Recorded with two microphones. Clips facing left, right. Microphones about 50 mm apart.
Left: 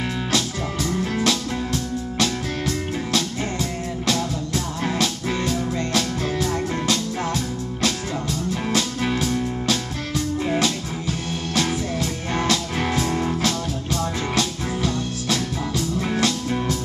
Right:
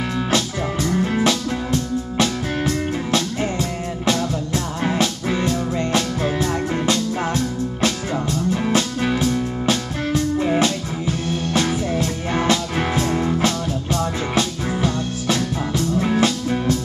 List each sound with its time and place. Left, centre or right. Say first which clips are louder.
0.8 s music: right 3 dB; centre
9.0 s music: right 3 dB; centre
14.3 s music: right 3 dB; centre